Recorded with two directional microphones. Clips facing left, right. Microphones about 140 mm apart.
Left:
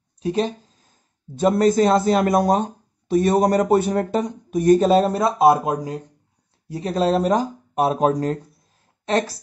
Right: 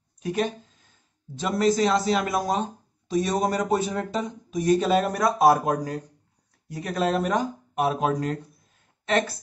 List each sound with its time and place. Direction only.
0.2 s a sound: 30° left (ahead or behind)
1.3 s speech: 50° left (ahead or behind)
4.8 s a woman's voice: 30° left (ahead or behind)